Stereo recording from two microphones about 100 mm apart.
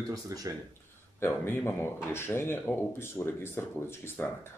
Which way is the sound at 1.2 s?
25° left (ahead or behind).